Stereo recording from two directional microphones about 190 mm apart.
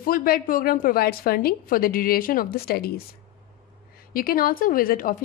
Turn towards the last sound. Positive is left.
turn(degrees=50)  # may be behind; listen again after turning